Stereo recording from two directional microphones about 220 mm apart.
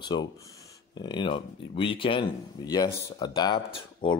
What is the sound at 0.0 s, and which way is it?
Speech, 20° left (ahead or behind).